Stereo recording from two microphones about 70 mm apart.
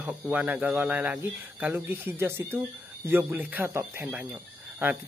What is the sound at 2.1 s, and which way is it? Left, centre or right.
Speech, right.